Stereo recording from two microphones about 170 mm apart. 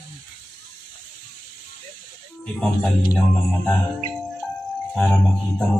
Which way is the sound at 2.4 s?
5° left (ahead or behind).